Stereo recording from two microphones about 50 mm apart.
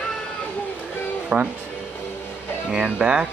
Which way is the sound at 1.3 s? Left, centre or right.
Right.